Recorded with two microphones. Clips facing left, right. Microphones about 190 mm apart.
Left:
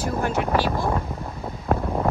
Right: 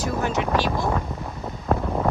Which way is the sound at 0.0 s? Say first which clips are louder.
Even; 10° left (ahead or behind).